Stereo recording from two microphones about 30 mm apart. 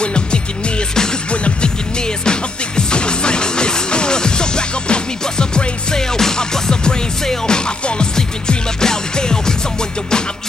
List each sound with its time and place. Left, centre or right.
0.0 s music: left
2.2 s music: left